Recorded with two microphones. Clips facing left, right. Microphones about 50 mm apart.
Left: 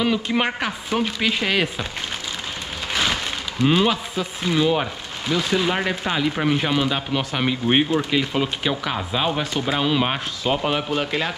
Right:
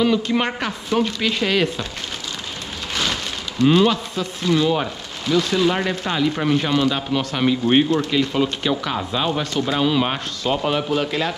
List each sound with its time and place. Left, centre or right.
0.0 s speech: centre
2.9 s speech: centre